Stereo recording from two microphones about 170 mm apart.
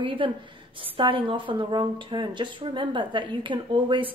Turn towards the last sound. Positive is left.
turn(degrees=-30)  # may be behind; listen again after turning